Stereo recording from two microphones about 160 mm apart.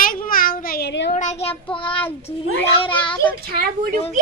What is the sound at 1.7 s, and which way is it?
Child singing, 30° left (ahead or behind).